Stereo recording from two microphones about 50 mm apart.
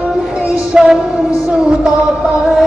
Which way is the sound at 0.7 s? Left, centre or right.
Centre.